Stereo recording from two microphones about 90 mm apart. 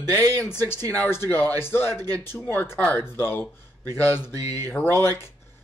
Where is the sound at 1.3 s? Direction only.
25° left (ahead or behind).